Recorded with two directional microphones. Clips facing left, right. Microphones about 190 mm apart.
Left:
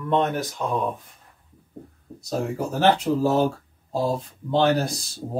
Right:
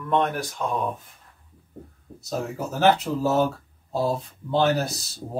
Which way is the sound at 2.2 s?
5° right (ahead or behind).